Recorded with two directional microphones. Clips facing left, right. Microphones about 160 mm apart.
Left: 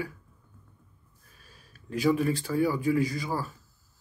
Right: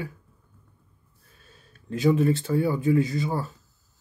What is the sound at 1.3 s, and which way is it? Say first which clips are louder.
Speech: right 2 dB; 25° right (ahead or behind).